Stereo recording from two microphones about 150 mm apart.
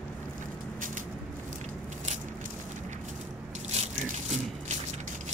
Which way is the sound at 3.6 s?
50° right (ahead or behind).